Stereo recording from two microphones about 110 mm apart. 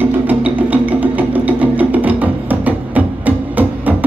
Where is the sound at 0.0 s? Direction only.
15° right (ahead or behind).